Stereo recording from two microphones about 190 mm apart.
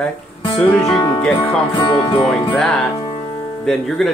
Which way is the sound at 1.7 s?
25° left (ahead or behind).